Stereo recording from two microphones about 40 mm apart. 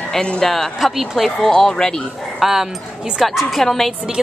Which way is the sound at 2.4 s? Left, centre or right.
Centre.